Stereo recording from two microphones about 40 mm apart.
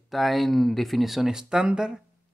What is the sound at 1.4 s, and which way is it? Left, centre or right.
Speech, right.